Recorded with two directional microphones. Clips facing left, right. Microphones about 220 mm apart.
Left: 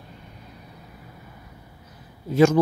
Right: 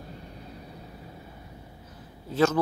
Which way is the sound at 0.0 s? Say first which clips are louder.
Right 3 dB; 35° right (ahead or behind).